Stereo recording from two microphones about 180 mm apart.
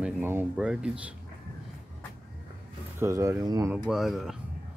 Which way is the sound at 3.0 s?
15° right (ahead or behind).